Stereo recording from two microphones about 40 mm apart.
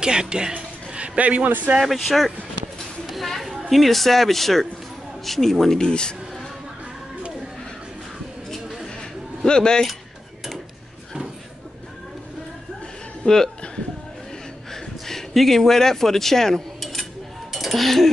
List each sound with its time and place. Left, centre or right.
0.0 s speech: right
0.9 s a man's voice: right
1.9 s a woman's voice: centre
5.8 s speech: left
9.4 s speech: centre
13.2 s speech: centre
14.7 s a sound: centre